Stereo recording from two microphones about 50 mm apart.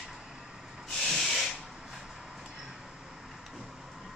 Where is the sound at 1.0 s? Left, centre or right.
Centre.